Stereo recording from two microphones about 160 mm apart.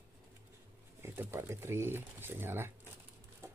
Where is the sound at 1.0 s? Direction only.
15° right (ahead or behind).